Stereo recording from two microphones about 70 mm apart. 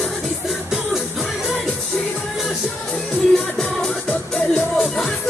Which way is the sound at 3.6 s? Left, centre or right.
Centre.